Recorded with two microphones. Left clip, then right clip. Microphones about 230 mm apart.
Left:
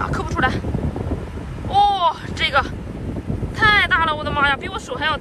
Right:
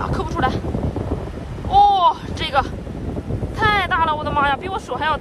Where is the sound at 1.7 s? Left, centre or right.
Right.